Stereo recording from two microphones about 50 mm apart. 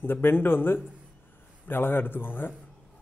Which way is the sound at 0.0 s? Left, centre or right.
Left.